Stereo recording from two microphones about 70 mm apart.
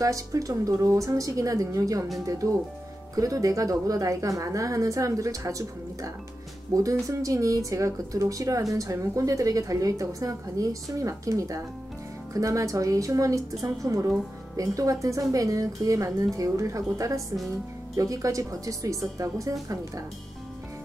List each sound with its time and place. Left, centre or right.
0.0 s speech: right